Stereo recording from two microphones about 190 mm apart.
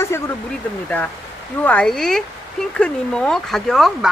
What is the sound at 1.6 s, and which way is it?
Speech, 5° left (ahead or behind).